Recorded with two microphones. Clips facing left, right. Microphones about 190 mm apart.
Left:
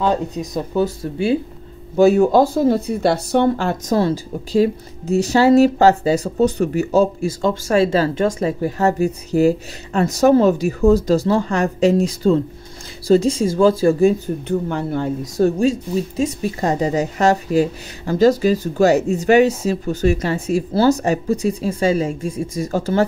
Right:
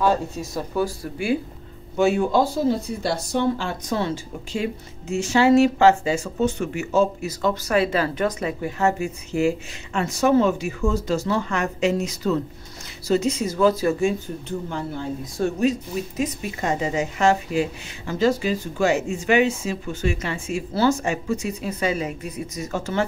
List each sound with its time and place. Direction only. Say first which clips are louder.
0.0 s speech: left 2 dB; 20° left (ahead or behind)
2.0 s speech: left 7 dB; 40° left (ahead or behind)
2.7 s a woman's voice: left 7 dB; 60° left (ahead or behind)
3.6 s a woman's voice: left 7 dB; 40° left (ahead or behind)
14.7 s a woman's voice: left 7 dB; 60° left (ahead or behind)
15.3 s a woman's voice: left 5 dB; 35° left (ahead or behind)